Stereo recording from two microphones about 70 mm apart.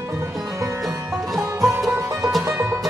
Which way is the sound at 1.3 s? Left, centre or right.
Centre.